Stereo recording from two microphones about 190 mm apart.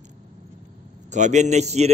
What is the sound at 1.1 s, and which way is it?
Speech, 40° right (ahead or behind).